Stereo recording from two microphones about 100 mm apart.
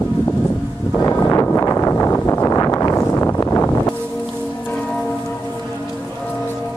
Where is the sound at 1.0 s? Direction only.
30° left (ahead or behind).